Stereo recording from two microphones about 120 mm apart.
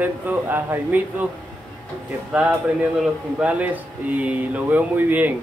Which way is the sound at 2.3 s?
10° right (ahead or behind).